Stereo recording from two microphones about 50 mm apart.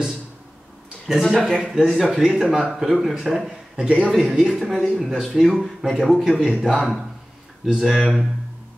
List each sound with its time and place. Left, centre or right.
1.2 s a man's voice: centre
1.7 s a man's voice: centre